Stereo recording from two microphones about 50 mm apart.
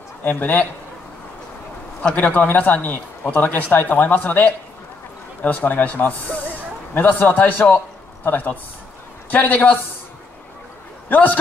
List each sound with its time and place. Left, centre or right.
0.2 s speech: left
2.1 s a man's voice: left
11.1 s a man's voice: left